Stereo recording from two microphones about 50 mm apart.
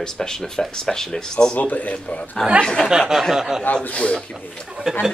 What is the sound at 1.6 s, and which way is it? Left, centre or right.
Speech, left.